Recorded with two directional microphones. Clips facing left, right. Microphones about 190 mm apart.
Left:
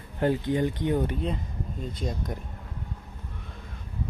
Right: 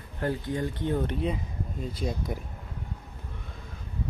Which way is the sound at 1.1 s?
5° right (ahead or behind).